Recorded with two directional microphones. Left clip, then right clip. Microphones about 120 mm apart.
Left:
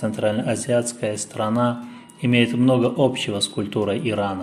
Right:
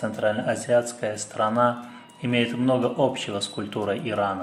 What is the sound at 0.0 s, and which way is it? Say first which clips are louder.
Speech: left 2 dB; 50° left (ahead or behind).